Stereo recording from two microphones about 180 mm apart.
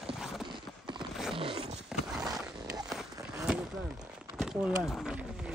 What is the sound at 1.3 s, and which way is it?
Zipper, 30° right (ahead or behind).